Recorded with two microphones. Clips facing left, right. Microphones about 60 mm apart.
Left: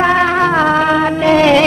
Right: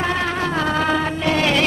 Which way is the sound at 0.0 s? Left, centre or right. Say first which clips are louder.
Left 9 dB; left.